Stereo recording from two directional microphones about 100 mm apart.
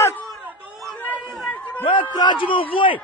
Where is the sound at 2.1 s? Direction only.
45° left (ahead or behind).